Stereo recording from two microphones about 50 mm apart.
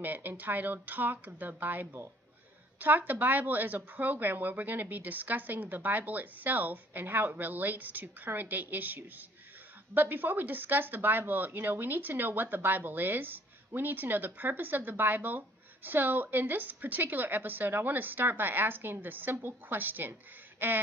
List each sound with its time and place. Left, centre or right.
0.0 s a woman's voice: right